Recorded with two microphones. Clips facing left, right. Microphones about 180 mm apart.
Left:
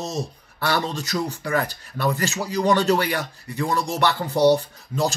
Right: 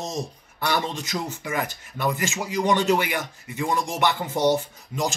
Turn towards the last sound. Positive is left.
turn(degrees=-15)  # may be behind; listen again after turning